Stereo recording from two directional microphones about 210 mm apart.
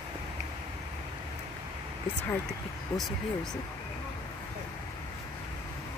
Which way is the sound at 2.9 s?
15° left (ahead or behind).